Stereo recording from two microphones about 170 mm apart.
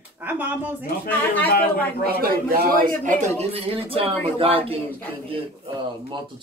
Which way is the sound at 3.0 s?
40° right (ahead or behind).